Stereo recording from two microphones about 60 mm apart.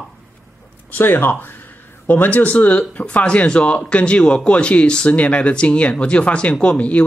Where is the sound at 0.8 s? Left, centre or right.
Left.